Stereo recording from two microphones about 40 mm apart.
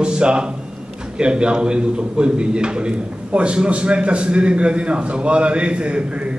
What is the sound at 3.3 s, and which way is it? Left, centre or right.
Speech, right.